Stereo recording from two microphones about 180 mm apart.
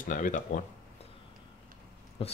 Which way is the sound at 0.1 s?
50° left (ahead or behind).